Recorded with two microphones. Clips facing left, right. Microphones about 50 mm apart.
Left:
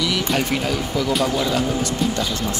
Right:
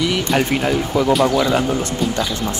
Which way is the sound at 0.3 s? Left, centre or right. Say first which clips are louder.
Right 4 dB; right.